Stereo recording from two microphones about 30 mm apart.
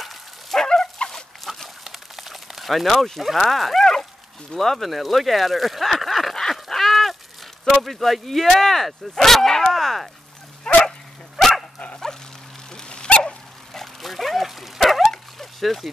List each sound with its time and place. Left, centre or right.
0.0 s dog: centre
1.0 s dog: left
1.9 s a sound: centre
4.6 s speech: centre
6.5 s goose: centre
7.8 s speech: centre
9.7 s a sound: centre
10.7 s dog: centre
11.3 s dog: centre
12.8 s dog: left
14.0 s dog: centre
15.3 s a sound: centre